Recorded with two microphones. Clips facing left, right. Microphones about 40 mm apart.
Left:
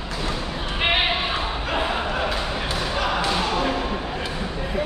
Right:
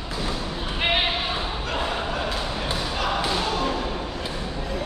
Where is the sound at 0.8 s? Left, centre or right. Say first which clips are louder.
Left 2 dB; centre.